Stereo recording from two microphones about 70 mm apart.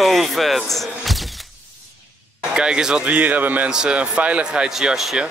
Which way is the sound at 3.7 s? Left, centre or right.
Centre.